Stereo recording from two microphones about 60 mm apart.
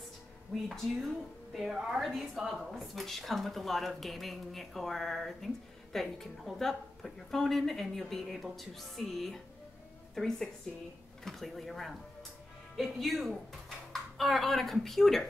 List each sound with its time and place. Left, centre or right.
0.7 s speech: centre